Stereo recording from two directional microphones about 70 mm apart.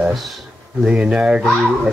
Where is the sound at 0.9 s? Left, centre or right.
Centre.